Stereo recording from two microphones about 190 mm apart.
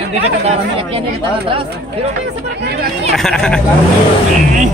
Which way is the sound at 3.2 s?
5° left (ahead or behind).